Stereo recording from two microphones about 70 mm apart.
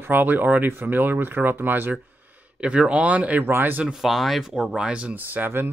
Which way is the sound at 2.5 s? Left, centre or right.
Centre.